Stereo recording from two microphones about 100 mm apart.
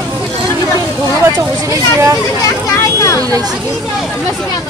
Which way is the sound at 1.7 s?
30° right (ahead or behind).